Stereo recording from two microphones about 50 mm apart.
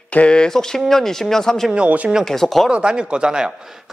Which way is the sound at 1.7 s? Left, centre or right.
Right.